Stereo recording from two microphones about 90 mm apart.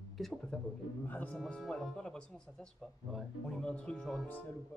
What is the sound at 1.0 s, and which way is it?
Speech, 15° left (ahead or behind).